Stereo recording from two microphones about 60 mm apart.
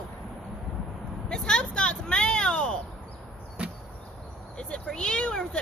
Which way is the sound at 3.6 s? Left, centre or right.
Centre.